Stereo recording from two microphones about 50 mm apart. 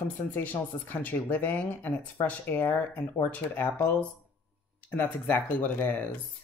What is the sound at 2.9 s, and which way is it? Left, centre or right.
Speech, left.